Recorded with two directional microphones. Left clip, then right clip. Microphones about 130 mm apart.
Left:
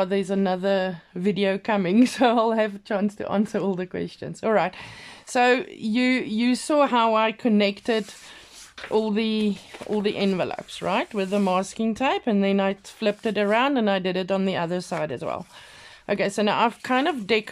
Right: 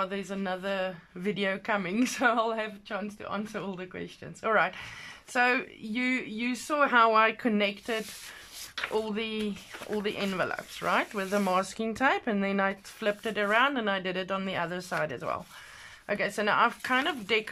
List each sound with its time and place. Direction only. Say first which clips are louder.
0.0 s speech: left 9 dB; 40° left (ahead or behind)
1.8 s speech: left 8 dB; 40° left (ahead or behind)
2.9 s speech: left 9 dB; 55° left (ahead or behind); by 6.9 s 40° left (ahead or behind)
6.9 s speech: left 2 dB; 25° left (ahead or behind)
13.1 s speech: left 4 dB; 30° left (ahead or behind)